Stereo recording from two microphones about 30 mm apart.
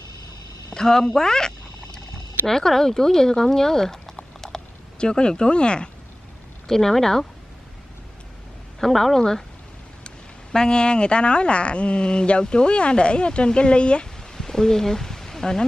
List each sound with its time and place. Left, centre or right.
0.7 s speech: centre
4.4 s a sound: centre
4.9 s speech: left
6.7 s speech: centre
8.7 s a woman's voice: centre
10.0 s speech: left
14.3 s a sound: centre